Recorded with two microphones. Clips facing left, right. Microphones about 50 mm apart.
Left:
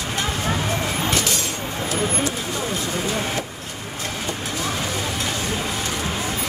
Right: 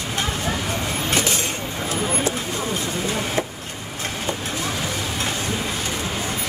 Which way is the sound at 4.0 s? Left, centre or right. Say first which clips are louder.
Right 1 dB; right.